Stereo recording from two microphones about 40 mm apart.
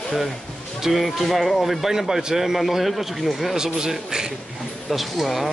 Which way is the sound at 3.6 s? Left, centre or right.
Centre.